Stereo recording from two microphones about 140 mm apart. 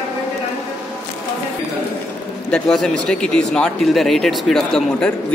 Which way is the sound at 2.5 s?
5° left (ahead or behind).